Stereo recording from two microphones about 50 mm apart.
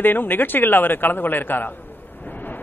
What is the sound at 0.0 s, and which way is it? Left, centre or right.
A man's voice, left.